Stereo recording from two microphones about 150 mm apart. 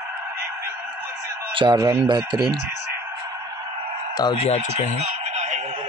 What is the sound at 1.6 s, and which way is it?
Speech, 30° right (ahead or behind).